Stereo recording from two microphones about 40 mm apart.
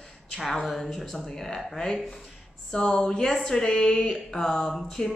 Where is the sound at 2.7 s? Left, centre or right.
Centre.